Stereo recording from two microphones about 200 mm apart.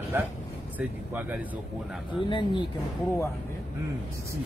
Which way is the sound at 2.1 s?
25° left (ahead or behind).